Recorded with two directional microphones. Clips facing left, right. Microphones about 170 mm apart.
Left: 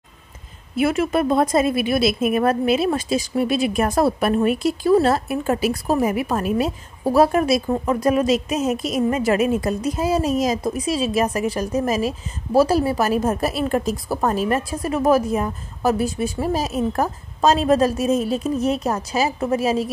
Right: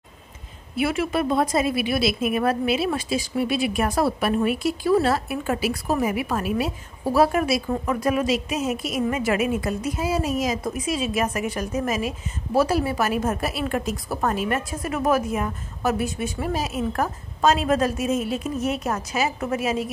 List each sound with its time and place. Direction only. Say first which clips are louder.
0.7 s a woman's voice: left 4 dB; 45° left (ahead or behind)